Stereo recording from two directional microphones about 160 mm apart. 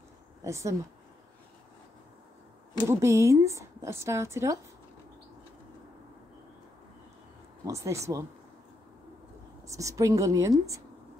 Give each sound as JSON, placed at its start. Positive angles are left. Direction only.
{"t": 0.4, "sound": "speech", "side_deg": -20}
{"t": 2.9, "sound": "speech", "side_deg": -15}
{"t": 7.6, "sound": "speech", "side_deg": -20}
{"t": 9.7, "sound": "speech", "side_deg": -20}